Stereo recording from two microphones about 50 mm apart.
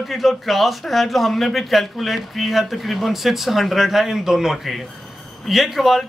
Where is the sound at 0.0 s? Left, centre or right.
Centre.